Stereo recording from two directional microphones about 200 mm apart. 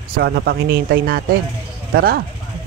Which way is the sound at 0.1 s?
50° right (ahead or behind).